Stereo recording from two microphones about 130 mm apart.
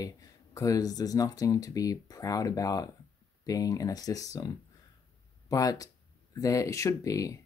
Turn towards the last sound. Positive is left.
turn(degrees=25)  # may be behind; listen again after turning